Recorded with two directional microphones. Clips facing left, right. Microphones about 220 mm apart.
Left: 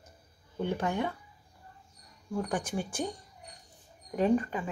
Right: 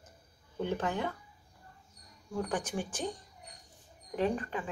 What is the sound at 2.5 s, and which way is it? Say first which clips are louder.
Speech: left 2 dB; 10° left (ahead or behind).